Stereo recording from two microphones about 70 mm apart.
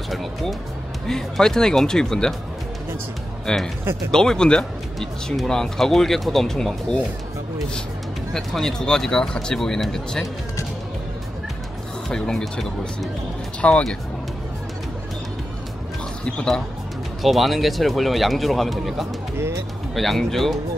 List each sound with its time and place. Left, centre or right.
0.1 s speech: centre
3.4 s speech: centre
8.3 s speech: centre
12.1 s speech: centre
17.2 s speech: centre
19.3 s speech: right
20.0 s speech: centre